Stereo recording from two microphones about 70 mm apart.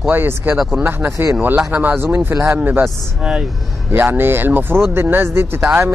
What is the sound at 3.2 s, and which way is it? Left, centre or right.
Speech, centre.